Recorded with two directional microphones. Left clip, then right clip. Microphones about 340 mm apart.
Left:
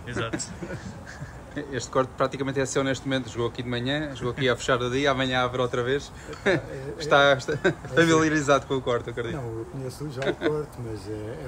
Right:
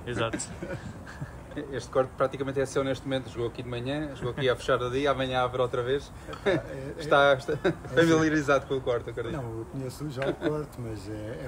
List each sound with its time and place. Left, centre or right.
1.7 s speech: left
10.4 s speech: left